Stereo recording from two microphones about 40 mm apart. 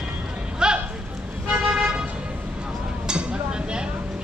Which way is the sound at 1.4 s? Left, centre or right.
Right.